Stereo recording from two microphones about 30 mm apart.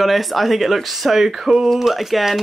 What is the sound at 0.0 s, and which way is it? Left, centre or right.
Speech, centre.